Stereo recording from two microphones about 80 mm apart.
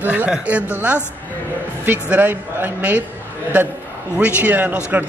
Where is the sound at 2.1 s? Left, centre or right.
Right.